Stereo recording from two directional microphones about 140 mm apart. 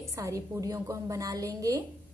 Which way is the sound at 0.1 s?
20° right (ahead or behind).